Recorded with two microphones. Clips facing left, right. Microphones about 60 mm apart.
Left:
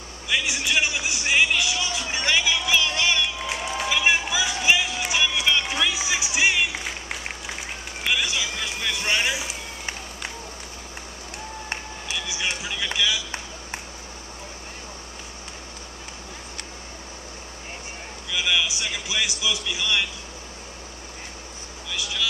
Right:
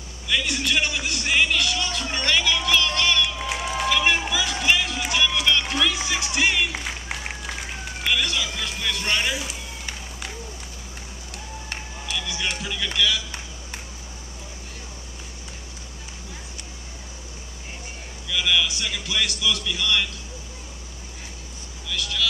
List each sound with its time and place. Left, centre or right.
0.3 s a man's voice: centre
3.3 s run: centre
3.8 s a sound: centre
8.0 s a sound: centre
12.3 s a man's voice: centre
18.3 s a man's voice: centre
21.9 s speech: centre